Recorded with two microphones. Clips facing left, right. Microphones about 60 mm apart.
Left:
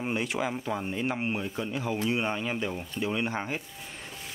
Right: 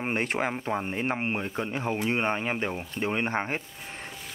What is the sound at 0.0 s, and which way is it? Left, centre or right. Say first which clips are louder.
Speech: right 2 dB; right.